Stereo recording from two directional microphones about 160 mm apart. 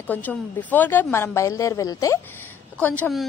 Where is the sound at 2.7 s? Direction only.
10° left (ahead or behind).